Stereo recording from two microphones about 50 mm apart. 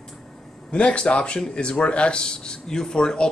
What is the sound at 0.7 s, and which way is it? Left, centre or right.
Speech, left.